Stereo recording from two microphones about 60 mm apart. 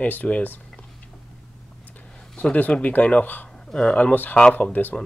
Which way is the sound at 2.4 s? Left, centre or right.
Left.